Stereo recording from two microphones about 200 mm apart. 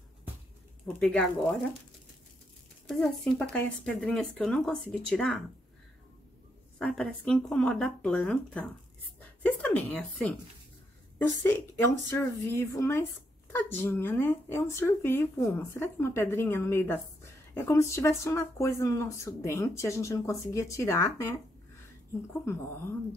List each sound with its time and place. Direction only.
0.8 s speech: 5° left (ahead or behind)
2.9 s speech: centre (ahead or behind)
6.8 s a woman's voice: 5° left (ahead or behind)
11.4 s a woman's voice: 10° left (ahead or behind)